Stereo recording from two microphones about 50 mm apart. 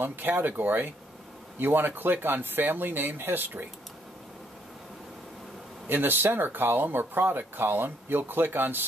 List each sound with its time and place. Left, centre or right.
0.0 s speech: right
5.9 s speech: right